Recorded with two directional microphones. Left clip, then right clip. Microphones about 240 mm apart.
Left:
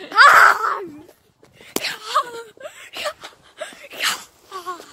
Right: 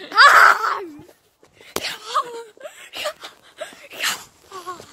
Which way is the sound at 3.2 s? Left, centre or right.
Right.